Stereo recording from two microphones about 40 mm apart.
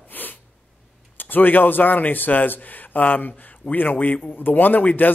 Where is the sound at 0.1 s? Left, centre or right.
Left.